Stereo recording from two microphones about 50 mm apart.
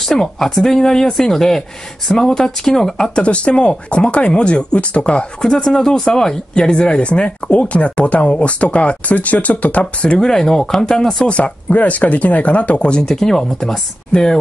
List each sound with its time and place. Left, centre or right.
0.0 s speech: centre
3.3 s speech: left
10.1 s speech: centre
11.3 s speech: left; by 14.4 s centre